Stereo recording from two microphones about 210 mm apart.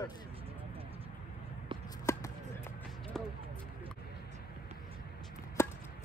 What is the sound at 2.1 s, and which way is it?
Basketball bounce, 15° left (ahead or behind).